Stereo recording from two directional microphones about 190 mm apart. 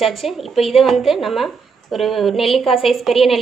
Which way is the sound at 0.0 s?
Centre (ahead or behind).